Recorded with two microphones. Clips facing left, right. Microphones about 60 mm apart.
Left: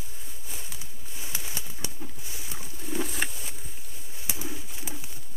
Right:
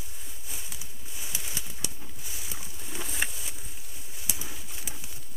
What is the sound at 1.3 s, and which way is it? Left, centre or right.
Pigeon, left.